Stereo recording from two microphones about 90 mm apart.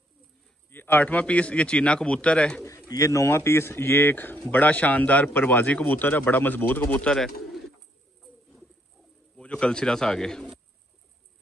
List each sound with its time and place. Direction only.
0.7 s speech: 20° left (ahead or behind)
2.9 s speech: 40° left (ahead or behind); by 7.1 s 20° left (ahead or behind)
7.1 s speech: centre (ahead or behind)
9.4 s speech: 10° left (ahead or behind)